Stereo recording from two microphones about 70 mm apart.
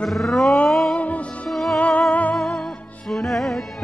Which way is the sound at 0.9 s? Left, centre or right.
Centre.